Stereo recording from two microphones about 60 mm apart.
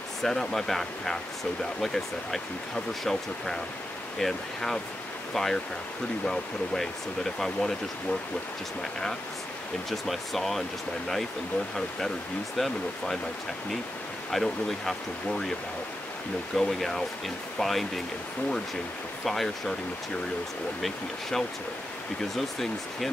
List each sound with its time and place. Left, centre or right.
0.2 s speech: centre
9.8 s speech: centre
12.5 s speech: centre
14.3 s speech: centre
16.5 s speech: centre
19.2 s speech: centre
20.8 s speech: centre